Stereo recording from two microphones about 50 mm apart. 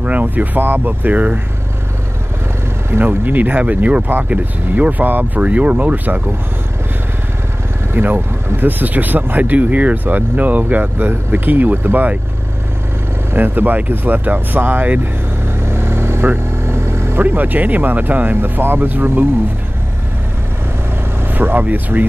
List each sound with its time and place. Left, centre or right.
0.0 s speech: right
2.9 s speech: right
7.9 s speech: right
13.3 s speech: right
15.6 s vehicle: right
17.2 s speech: right
21.2 s speech: right